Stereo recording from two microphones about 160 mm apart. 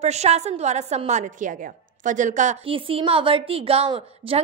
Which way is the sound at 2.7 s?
35° right (ahead or behind).